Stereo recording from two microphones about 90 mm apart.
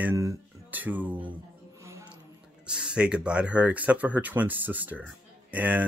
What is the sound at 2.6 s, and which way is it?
Speech, 10° right (ahead or behind).